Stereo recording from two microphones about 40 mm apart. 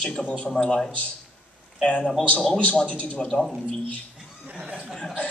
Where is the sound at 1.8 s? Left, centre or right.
Left.